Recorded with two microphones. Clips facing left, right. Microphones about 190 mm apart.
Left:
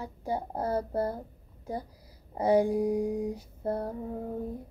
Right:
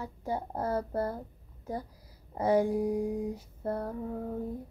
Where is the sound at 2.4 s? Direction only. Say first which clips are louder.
Left 2 dB; 15° left (ahead or behind).